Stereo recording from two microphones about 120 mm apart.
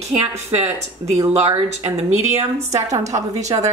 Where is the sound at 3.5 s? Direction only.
40° right (ahead or behind).